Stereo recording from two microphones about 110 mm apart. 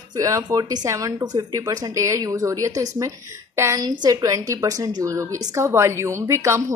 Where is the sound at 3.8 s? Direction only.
35° right (ahead or behind).